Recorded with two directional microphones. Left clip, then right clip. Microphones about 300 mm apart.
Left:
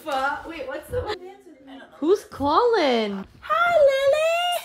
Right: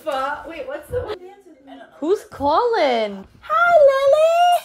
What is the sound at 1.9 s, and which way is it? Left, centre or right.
Speech, centre.